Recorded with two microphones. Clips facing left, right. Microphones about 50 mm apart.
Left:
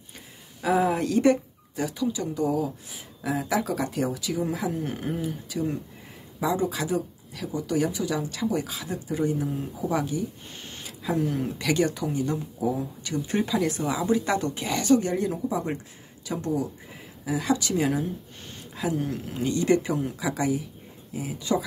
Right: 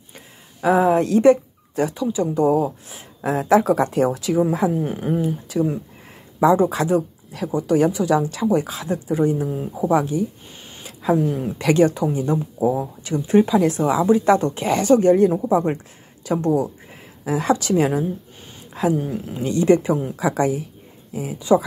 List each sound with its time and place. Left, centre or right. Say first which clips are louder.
0.7 s speech: right 6 dB; centre
0.9 s speech: right 7 dB; right
4.8 s speech: right 7 dB; right
5.2 s speech: right 8 dB; right
10.6 s a sound: right 1 dB; centre
11.0 s speech: right 7 dB; right
18.7 s a sound: right 8 dB; right
18.9 s speech: right 4 dB; centre
19.5 s speech: right 7 dB; right